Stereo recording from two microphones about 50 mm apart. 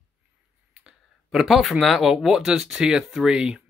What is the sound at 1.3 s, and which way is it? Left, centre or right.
Speech, centre.